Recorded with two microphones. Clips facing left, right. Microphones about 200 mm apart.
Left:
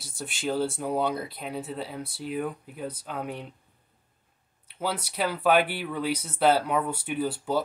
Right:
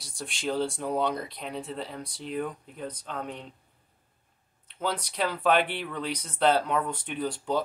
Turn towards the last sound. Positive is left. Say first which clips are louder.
# left 2 dB
turn(degrees=5)  # may be behind; listen again after turning